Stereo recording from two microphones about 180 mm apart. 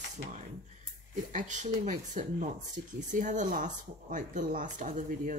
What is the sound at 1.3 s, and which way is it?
A woman's voice, 45° right (ahead or behind).